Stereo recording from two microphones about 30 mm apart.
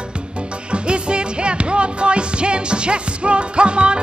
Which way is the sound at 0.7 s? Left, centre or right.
Right.